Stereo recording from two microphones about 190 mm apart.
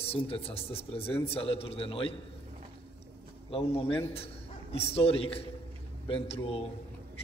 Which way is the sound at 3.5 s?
30° left (ahead or behind).